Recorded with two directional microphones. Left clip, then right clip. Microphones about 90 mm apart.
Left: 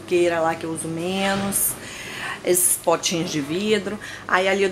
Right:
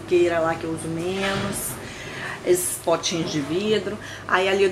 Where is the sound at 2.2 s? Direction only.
25° left (ahead or behind).